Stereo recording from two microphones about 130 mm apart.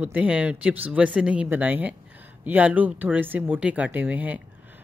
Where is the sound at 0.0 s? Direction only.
10° right (ahead or behind).